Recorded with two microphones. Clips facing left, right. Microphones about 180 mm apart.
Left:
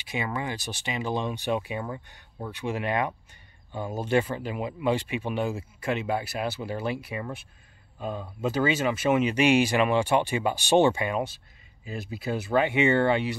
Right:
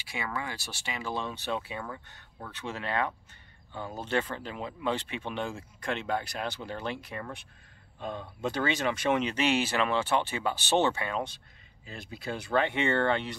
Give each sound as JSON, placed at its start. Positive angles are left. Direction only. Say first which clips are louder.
{"t": 0.0, "sound": "speech", "louder": "left 5 dB", "side_deg": 20}